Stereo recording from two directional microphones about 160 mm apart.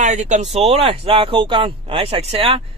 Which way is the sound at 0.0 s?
45° right (ahead or behind).